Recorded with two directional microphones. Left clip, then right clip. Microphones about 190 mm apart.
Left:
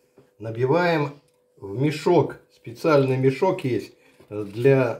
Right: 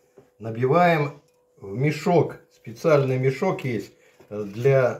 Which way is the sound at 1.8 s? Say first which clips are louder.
Left 1 dB; 50° left (ahead or behind).